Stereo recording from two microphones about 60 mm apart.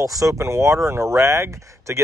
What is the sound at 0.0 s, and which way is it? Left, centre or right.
Speech, right.